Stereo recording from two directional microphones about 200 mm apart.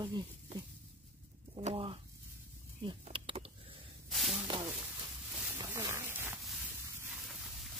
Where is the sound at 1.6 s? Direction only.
30° right (ahead or behind).